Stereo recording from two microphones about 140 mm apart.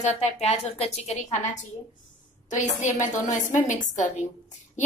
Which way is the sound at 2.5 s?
60° left (ahead or behind).